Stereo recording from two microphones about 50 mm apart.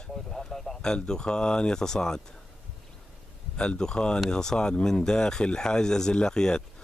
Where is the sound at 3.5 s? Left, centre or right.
Centre.